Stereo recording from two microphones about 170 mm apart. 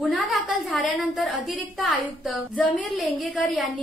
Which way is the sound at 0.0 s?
Centre (ahead or behind).